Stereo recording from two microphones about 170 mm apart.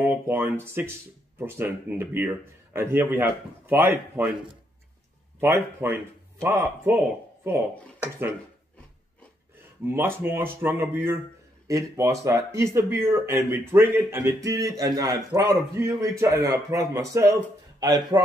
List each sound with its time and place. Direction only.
0.0 s a man's voice: 10° right (ahead or behind)
5.4 s a man's voice: 15° right (ahead or behind)
8.0 s a man's voice: 10° right (ahead or behind)
9.8 s a man's voice: 15° right (ahead or behind)